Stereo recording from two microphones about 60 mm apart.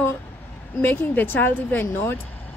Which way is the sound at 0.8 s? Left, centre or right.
Left.